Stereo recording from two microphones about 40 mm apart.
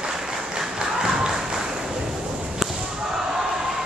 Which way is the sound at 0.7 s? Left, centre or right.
Centre.